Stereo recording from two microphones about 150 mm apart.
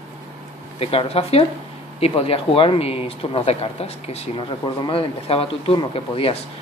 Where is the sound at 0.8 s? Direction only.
40° left (ahead or behind).